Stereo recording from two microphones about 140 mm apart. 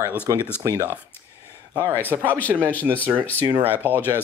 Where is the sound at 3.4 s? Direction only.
10° right (ahead or behind).